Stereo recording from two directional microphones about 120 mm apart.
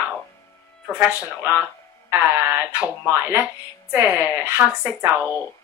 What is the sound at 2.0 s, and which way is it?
Speech, 20° right (ahead or behind).